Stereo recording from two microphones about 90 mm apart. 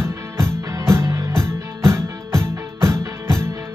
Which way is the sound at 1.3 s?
30° right (ahead or behind).